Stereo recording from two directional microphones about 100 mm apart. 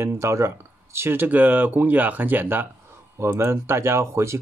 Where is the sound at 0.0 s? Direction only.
25° right (ahead or behind).